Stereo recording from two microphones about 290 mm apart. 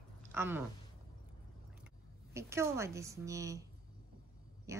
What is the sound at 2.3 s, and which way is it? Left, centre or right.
A woman's voice, centre.